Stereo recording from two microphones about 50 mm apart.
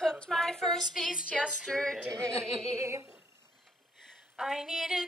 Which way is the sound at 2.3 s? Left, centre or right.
Right.